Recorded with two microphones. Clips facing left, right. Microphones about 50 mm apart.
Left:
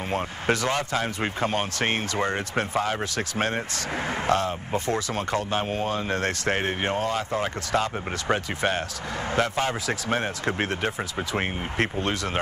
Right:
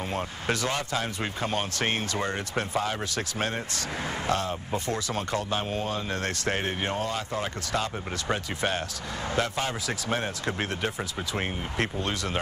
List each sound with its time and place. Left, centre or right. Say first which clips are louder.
0.1 s speech: left 6 dB; left